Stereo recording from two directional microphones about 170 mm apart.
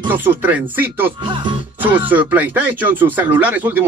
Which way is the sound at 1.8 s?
10° right (ahead or behind).